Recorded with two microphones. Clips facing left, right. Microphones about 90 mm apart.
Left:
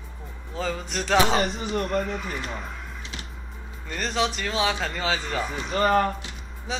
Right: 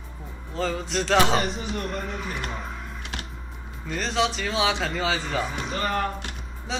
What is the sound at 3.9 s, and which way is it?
Speech, centre (ahead or behind).